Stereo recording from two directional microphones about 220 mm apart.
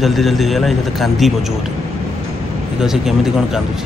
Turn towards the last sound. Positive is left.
turn(degrees=0)  # may be behind; listen again after turning